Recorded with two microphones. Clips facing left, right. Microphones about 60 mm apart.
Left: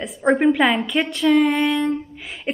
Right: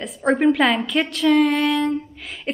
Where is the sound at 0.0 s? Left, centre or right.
Centre.